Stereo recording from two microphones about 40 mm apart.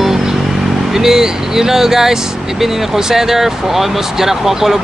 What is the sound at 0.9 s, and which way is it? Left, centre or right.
Speech, centre.